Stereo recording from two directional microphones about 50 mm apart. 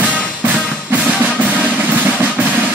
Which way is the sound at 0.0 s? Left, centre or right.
Right.